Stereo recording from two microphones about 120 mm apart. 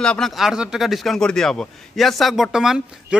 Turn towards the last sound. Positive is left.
turn(degrees=-5)  # may be behind; listen again after turning